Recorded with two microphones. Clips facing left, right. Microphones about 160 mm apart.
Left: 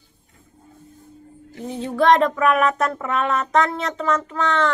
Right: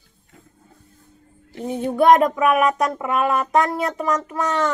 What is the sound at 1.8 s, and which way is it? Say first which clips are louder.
Speech: right 2 dB; 20° right (ahead or behind).